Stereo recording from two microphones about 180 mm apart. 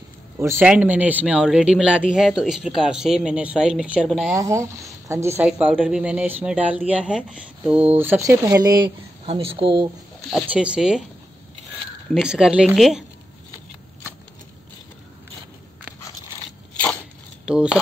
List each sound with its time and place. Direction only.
0.4 s speech: 10° right (ahead or behind)
4.3 s speech: 15° right (ahead or behind)
10.3 s speech: 5° right (ahead or behind)
12.1 s speech: 5° right (ahead or behind)
17.5 s speech: 5° right (ahead or behind)